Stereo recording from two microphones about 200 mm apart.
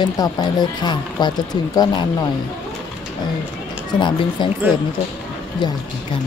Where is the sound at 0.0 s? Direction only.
20° left (ahead or behind).